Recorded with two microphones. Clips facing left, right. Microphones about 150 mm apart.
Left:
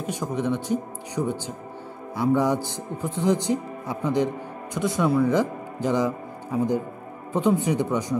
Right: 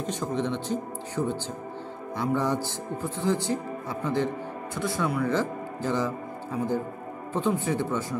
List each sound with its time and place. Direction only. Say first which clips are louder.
0.0 s speech: left 2 dB; 10° left (ahead or behind)